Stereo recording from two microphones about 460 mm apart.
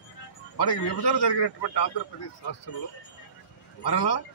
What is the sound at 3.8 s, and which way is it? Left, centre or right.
Speech, left.